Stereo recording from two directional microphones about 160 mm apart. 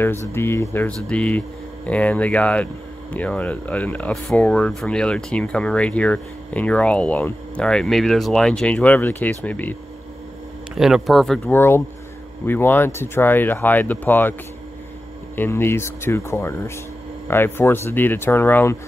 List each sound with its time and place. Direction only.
0.0 s speech: 15° left (ahead or behind)
10.7 s speech: 5° right (ahead or behind)
11.5 s speech: 15° left (ahead or behind)
15.3 s speech: 15° left (ahead or behind)